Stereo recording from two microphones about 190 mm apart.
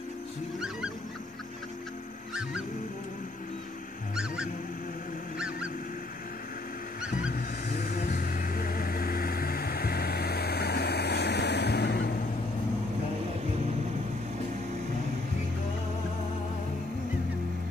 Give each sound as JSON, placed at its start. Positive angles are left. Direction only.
{"t": 0.6, "sound": "goose", "side_deg": -5}
{"t": 4.1, "sound": "goose", "side_deg": -5}
{"t": 7.2, "sound": "vehicle", "side_deg": 50}